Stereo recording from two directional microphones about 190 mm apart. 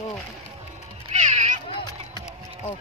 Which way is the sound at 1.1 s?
35° right (ahead or behind).